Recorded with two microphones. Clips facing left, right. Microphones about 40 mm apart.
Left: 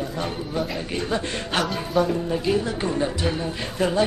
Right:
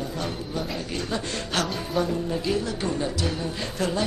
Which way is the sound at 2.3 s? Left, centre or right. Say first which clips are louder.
Left 3 dB; centre.